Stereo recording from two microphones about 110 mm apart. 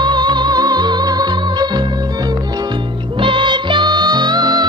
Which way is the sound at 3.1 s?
50° right (ahead or behind).